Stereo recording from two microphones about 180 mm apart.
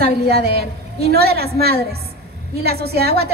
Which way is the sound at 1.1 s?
60° right (ahead or behind).